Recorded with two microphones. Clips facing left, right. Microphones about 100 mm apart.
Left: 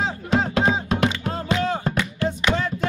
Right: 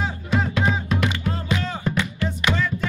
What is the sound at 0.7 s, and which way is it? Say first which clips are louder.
Music: left 2 dB; 20° left (ahead or behind).